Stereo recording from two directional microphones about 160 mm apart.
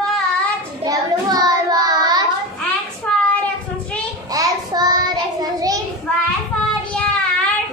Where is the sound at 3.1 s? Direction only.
5° left (ahead or behind).